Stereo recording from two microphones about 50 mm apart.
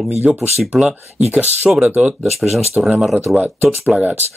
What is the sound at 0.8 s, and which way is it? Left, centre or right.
Speech, right.